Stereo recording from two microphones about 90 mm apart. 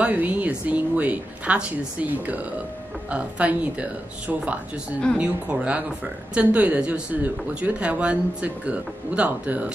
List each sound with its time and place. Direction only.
0.0 s speech: 20° right (ahead or behind)
5.1 s speech: 15° right (ahead or behind)